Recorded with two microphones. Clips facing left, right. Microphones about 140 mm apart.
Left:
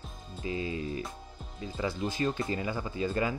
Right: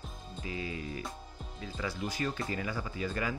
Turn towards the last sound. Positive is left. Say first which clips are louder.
# left 4 dB
turn(degrees=25)  # may be behind; listen again after turning